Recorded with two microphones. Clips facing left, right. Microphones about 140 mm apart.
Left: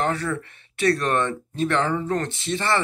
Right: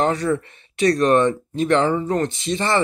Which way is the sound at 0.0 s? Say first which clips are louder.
Right 5 dB; 20° right (ahead or behind).